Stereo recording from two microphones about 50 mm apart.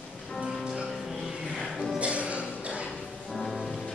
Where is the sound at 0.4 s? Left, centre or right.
Centre.